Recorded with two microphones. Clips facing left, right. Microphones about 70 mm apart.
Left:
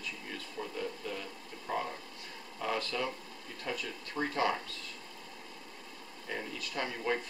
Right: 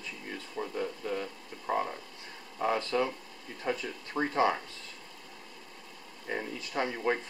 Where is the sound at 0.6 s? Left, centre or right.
Right.